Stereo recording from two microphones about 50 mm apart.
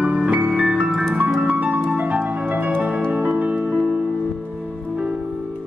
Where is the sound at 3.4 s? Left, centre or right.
Right.